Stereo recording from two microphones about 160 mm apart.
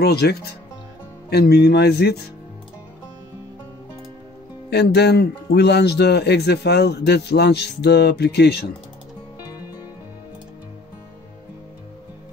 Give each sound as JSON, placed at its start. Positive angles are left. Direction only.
{"t": 0.0, "sound": "speech", "side_deg": 90}
{"t": 4.6, "sound": "speech", "side_deg": 90}